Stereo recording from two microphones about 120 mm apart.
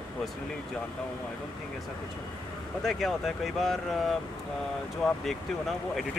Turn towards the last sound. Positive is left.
turn(degrees=0)  # may be behind; listen again after turning